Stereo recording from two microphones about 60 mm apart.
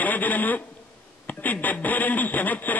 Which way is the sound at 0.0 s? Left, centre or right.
Left.